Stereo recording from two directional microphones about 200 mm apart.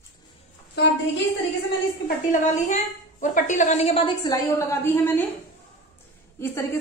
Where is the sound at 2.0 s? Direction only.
40° left (ahead or behind); by 5.2 s 10° left (ahead or behind).